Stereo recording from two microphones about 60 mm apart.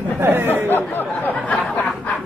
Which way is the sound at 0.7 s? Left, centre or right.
Left.